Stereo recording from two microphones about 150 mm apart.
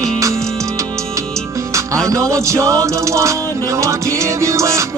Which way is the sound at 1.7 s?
20° right (ahead or behind).